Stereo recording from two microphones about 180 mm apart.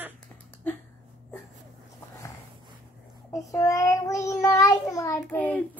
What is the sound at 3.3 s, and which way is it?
Child singing, 20° left (ahead or behind).